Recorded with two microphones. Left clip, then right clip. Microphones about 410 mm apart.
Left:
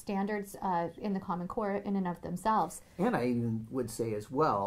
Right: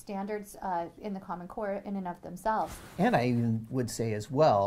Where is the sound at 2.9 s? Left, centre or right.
Right.